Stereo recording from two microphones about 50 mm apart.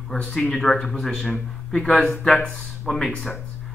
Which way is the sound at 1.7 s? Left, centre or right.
Left.